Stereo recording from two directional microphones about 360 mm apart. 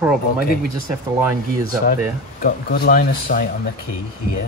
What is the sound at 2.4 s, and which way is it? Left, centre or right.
Speech, left.